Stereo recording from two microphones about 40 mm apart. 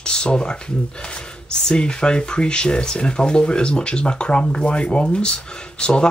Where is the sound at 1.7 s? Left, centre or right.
Left.